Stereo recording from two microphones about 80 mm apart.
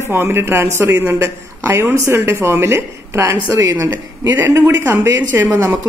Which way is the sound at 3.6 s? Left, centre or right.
Right.